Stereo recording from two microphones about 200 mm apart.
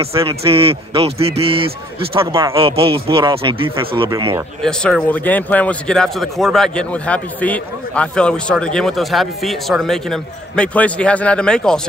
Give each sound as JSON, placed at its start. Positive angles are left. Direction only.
{"t": 0.0, "sound": "speech", "side_deg": -30}
{"t": 4.6, "sound": "speech", "side_deg": 5}